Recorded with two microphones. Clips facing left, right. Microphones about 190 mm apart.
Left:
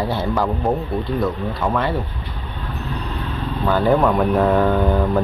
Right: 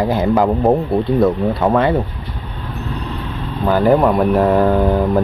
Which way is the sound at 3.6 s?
15° right (ahead or behind).